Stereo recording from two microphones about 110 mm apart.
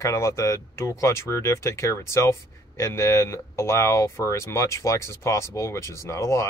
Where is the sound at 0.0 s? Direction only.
25° left (ahead or behind).